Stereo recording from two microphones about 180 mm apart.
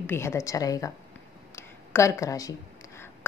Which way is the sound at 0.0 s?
15° left (ahead or behind).